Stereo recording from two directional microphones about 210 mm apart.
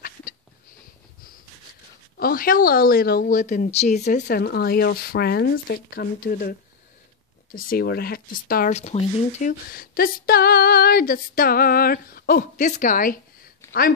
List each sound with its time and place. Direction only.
0.0 s a sound: 45° left (ahead or behind)
2.1 s speech: 45° left (ahead or behind)
4.0 s speech: 45° left (ahead or behind)
7.5 s speech: 45° left (ahead or behind)